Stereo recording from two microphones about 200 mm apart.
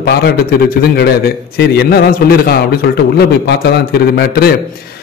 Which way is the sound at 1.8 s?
50° left (ahead or behind).